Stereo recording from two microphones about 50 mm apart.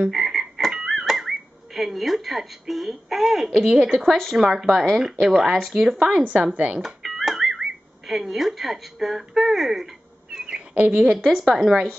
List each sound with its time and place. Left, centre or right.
0.1 s frog: centre
3.5 s speech: centre
6.5 s speech: right
6.8 s music: centre
8.1 s speech: centre
10.7 s a woman's voice: right
11.2 s speech: centre